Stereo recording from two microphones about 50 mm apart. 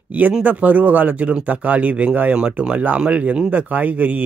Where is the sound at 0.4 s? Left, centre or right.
Right.